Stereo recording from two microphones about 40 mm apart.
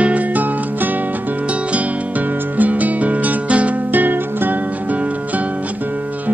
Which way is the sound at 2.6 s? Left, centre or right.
Right.